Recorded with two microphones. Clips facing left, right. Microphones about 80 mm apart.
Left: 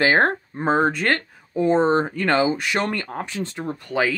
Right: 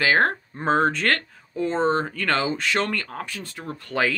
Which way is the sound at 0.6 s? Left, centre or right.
Centre.